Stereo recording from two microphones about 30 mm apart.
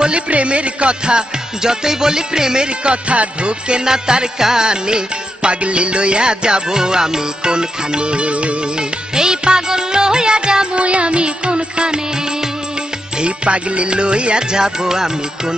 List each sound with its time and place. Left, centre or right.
0.3 s music: right
1.0 s music: right
3.8 s music: right
6.7 s music: right
8.7 s music: right
10.8 s music: right
13.5 s music: right